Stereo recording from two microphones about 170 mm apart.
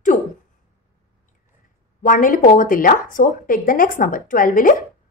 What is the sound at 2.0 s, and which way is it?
A woman's voice, 55° left (ahead or behind).